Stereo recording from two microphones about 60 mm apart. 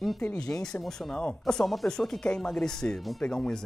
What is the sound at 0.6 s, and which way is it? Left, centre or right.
Speech, centre.